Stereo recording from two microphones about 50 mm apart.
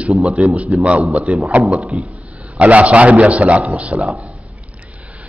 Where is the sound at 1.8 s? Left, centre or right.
Centre.